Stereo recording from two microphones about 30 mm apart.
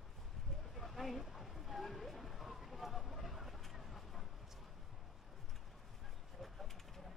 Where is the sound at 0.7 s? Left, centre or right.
Centre.